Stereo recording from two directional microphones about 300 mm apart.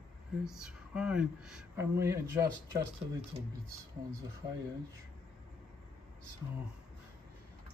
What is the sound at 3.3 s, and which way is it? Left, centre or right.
Speech, centre.